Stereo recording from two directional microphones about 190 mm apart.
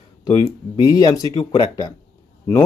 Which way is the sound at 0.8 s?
20° left (ahead or behind).